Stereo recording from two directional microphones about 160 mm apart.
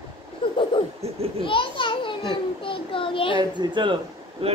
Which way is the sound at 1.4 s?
30° left (ahead or behind).